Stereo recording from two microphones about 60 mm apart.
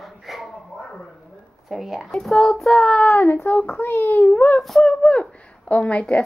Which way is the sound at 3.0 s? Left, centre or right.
Left.